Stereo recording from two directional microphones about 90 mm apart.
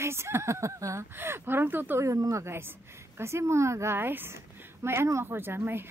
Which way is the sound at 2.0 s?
40° right (ahead or behind).